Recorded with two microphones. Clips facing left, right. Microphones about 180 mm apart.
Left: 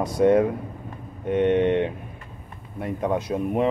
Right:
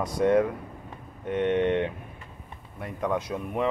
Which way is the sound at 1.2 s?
10° left (ahead or behind).